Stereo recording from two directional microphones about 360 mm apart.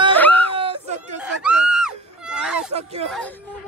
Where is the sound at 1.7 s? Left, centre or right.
Centre.